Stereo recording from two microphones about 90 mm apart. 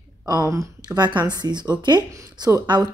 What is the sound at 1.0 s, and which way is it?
Speech, 55° right (ahead or behind).